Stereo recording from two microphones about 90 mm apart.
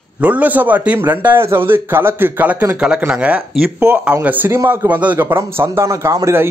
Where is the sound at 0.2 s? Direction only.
15° right (ahead or behind).